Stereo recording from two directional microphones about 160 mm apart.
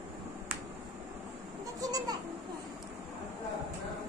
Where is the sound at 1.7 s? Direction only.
25° right (ahead or behind).